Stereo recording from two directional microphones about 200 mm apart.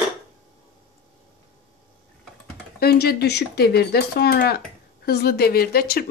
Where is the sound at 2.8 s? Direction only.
50° left (ahead or behind).